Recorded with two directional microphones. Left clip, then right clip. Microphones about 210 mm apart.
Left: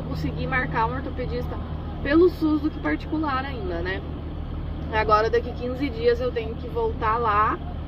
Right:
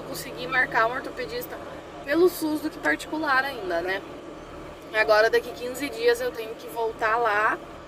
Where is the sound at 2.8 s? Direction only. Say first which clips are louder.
Right 1 dB; 15° right (ahead or behind).